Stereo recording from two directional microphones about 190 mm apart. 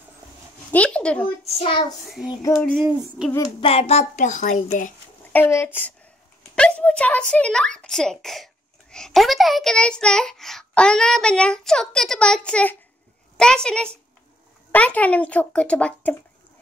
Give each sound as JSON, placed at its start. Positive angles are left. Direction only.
{"t": 0.7, "sound": "speech", "side_deg": 5}
{"t": 1.4, "sound": "a woman's voice", "side_deg": 30}
{"t": 2.0, "sound": "a child's voice", "side_deg": -5}
{"t": 3.6, "sound": "a woman's voice", "side_deg": 30}
{"t": 5.3, "sound": "a child's voice", "side_deg": 15}